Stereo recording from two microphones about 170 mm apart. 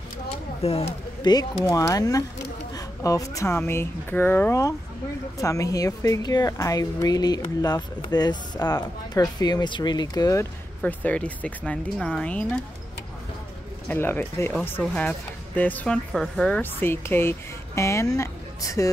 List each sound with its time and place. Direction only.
0.6 s speech: 35° left (ahead or behind)
1.2 s speech: 25° left (ahead or behind)
13.8 s speech: 10° left (ahead or behind)